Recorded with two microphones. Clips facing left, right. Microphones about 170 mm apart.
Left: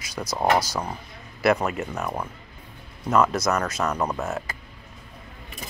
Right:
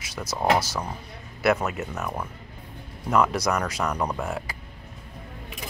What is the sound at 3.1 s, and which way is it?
Speech, 10° right (ahead or behind).